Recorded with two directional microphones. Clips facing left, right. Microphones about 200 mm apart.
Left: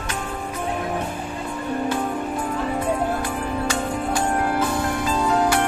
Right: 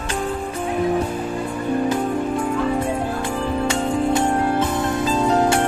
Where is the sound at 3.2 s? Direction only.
25° right (ahead or behind).